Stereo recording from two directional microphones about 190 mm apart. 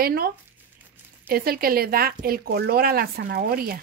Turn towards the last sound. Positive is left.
turn(degrees=-50)  # may be behind; listen again after turning